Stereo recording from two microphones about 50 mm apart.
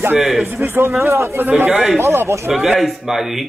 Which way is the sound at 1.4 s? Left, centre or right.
Right.